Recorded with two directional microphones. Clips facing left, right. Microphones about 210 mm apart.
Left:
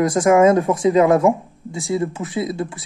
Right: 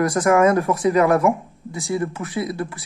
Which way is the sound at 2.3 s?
25° left (ahead or behind).